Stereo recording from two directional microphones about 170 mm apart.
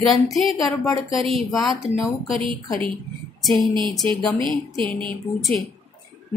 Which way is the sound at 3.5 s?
25° right (ahead or behind).